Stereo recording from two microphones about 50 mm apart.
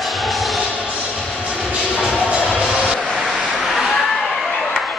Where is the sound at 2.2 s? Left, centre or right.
Centre.